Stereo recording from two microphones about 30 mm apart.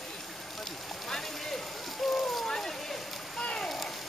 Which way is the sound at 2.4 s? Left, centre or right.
Centre.